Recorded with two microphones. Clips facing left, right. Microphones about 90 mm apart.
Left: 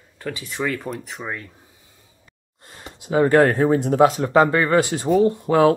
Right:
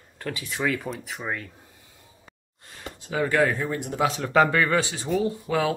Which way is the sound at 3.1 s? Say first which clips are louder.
Left 7 dB; 40° left (ahead or behind).